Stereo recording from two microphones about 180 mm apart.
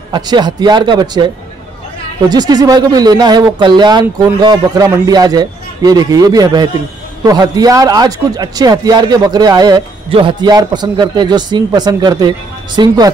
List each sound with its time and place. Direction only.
0.1 s speech: 25° right (ahead or behind)